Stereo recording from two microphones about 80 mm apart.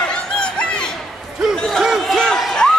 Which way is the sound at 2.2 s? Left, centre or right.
Centre.